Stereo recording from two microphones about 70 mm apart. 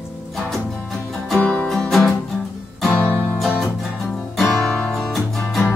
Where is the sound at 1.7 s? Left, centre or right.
Centre.